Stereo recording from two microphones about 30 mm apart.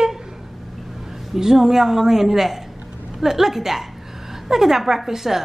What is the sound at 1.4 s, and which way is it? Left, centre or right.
A woman's voice, centre.